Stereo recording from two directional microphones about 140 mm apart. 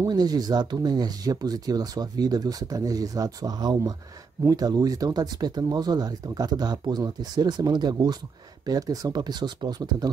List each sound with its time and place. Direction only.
0.0 s speech: 30° right (ahead or behind)